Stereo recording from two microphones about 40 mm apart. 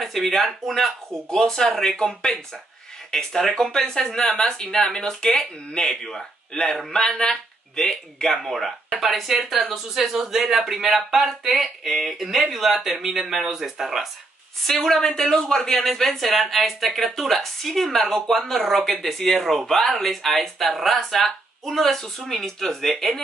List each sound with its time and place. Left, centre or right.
0.0 s speech: centre
1.3 s speech: centre
3.1 s speech: centre
9.0 s speech: centre
14.7 s speech: centre